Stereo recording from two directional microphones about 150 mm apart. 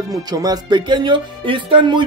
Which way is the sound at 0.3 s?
25° right (ahead or behind).